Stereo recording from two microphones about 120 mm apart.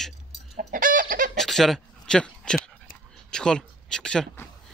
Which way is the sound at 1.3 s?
5° left (ahead or behind).